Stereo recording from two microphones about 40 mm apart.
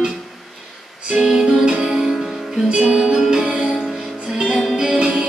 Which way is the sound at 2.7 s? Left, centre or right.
Centre.